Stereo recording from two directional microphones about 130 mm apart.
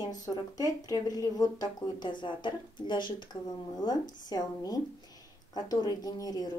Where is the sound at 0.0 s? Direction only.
30° left (ahead or behind).